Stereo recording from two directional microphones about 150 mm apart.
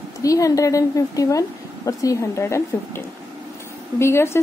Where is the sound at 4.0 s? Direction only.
15° left (ahead or behind).